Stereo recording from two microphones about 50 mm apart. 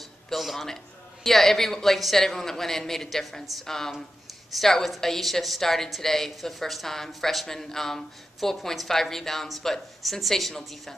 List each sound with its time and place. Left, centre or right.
0.3 s a woman's voice: centre